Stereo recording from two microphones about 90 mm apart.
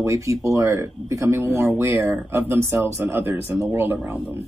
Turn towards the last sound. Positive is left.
turn(degrees=-20)  # may be behind; listen again after turning